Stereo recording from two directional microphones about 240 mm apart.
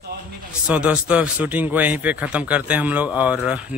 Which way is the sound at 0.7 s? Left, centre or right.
Centre.